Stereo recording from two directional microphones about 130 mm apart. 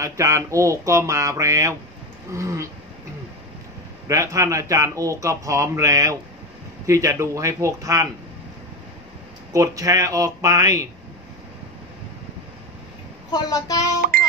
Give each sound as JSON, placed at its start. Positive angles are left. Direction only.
{"t": 0.0, "sound": "speech", "side_deg": -20}
{"t": 4.1, "sound": "speech", "side_deg": -25}
{"t": 9.5, "sound": "speech", "side_deg": -25}
{"t": 13.3, "sound": "speech", "side_deg": 30}